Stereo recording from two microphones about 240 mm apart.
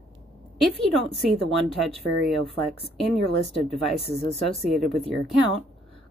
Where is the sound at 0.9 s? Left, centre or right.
Centre.